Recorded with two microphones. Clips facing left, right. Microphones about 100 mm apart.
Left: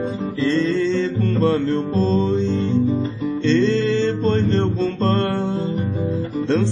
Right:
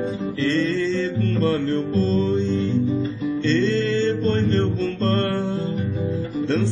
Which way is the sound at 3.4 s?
25° left (ahead or behind).